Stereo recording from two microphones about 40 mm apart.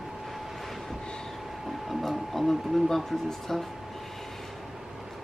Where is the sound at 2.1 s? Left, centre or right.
Centre.